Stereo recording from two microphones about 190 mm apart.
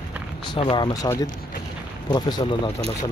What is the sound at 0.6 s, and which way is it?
Speech, 25° left (ahead or behind).